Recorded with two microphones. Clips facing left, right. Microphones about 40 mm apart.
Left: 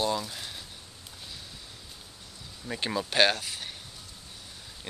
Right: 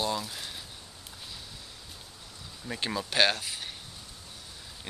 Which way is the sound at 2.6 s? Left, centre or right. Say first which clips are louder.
Left 2 dB; centre.